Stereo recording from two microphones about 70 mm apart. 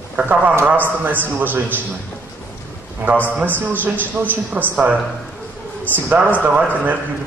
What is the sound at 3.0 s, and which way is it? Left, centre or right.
A man's voice, right.